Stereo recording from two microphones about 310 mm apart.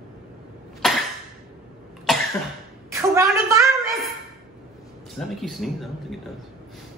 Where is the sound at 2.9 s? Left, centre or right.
Centre.